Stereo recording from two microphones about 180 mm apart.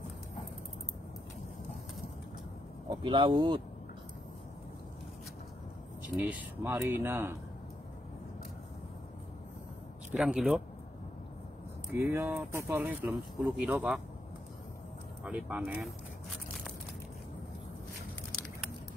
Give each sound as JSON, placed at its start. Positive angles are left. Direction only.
{"t": 2.9, "sound": "speech", "side_deg": -25}
{"t": 6.0, "sound": "speech", "side_deg": -10}
{"t": 10.1, "sound": "speech", "side_deg": -5}
{"t": 12.1, "sound": "speech", "side_deg": -10}
{"t": 15.2, "sound": "speech", "side_deg": -5}
{"t": 16.3, "sound": "a sound", "side_deg": 5}